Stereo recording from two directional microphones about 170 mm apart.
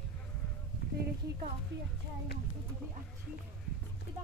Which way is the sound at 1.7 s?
90° right.